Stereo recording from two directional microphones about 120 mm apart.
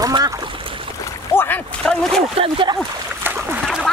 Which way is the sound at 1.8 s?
5° left (ahead or behind).